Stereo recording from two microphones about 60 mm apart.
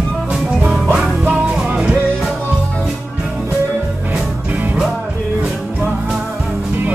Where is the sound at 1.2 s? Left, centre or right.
Centre.